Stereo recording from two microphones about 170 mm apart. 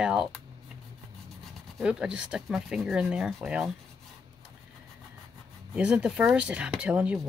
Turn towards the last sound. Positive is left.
turn(degrees=-5)  # may be behind; listen again after turning